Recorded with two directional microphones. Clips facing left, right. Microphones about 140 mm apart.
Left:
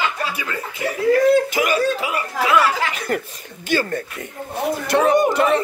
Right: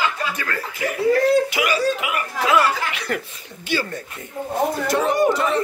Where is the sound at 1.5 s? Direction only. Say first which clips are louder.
Left 2 dB; 45° left (ahead or behind).